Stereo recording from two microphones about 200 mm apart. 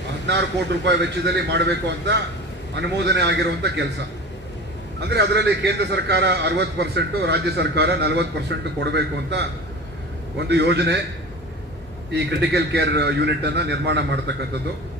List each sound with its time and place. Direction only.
0.8 s a man's voice: 60° right (ahead or behind)
5.0 s a man's voice: 55° right (ahead or behind)
12.1 s a man's voice: 55° right (ahead or behind)